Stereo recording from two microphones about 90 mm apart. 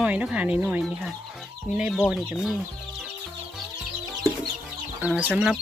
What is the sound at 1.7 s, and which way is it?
Speech, 5° right (ahead or behind).